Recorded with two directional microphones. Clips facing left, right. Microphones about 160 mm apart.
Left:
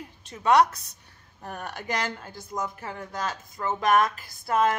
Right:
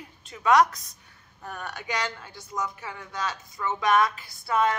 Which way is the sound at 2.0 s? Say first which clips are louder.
Left 1 dB; 45° left (ahead or behind).